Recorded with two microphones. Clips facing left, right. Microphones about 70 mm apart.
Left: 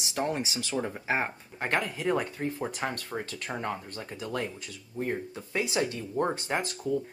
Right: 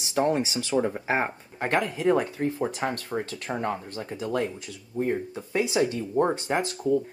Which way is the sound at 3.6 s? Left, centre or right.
Right.